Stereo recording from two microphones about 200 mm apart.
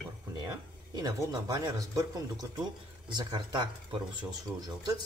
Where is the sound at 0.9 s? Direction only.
20° right (ahead or behind).